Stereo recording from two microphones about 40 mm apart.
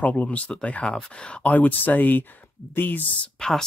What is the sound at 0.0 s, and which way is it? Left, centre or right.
Speech, left.